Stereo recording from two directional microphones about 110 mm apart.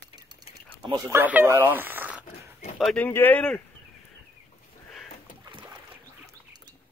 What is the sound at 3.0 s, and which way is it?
Speech, 20° left (ahead or behind).